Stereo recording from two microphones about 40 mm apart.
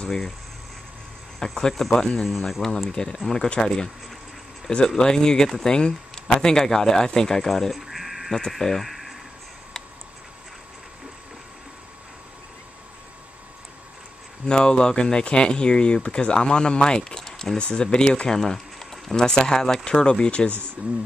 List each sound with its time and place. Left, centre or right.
1.4 s speech: centre
2.2 s speech: centre
2.6 s speech: centre
7.8 s bleat: centre
8.5 s speech: centre
14.4 s speech: left
17.6 s speech: left; by 19.1 s centre
19.1 s speech: centre